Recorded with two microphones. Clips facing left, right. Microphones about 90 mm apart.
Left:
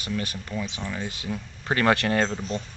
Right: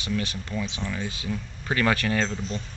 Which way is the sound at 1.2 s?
35° left (ahead or behind).